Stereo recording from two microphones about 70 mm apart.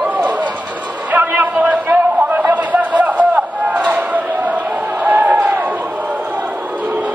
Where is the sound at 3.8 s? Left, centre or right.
Right.